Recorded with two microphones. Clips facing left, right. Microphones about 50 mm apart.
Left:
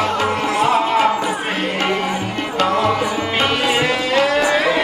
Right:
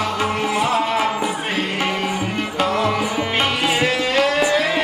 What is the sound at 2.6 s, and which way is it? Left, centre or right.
Music, centre.